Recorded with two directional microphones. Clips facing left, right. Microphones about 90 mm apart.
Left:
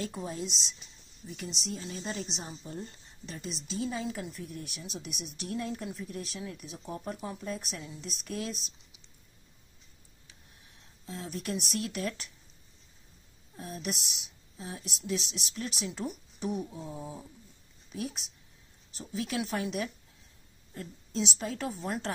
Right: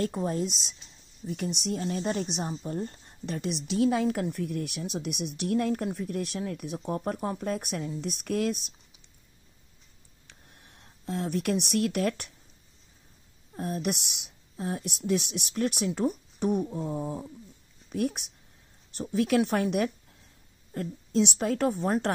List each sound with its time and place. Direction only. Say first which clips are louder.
0.0 s speech: right 7 dB; 50° right (ahead or behind)
10.2 s a sound: right 5 dB; 60° right (ahead or behind)
13.6 s speech: right 7 dB; 55° right (ahead or behind)